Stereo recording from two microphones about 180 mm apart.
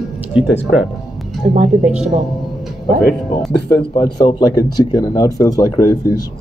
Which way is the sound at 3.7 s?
20° left (ahead or behind).